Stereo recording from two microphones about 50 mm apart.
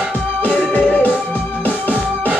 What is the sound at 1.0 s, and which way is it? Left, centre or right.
Music, left.